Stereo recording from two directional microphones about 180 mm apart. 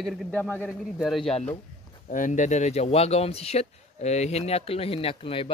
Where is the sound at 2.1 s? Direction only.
45° left (ahead or behind).